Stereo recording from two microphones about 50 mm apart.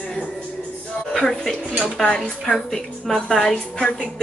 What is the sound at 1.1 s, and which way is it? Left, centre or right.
Music, centre.